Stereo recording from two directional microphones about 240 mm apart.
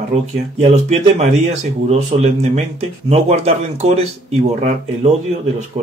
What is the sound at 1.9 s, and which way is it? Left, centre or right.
Speech, right.